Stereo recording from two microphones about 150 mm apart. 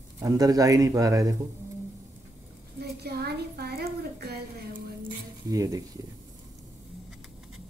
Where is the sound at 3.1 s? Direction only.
90° right.